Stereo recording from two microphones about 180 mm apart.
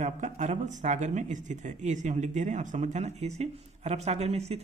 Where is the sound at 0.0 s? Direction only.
40° right (ahead or behind).